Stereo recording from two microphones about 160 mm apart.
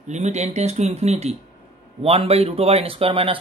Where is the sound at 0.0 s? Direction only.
45° right (ahead or behind).